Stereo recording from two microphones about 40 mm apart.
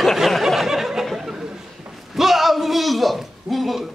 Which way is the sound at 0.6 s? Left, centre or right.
Centre.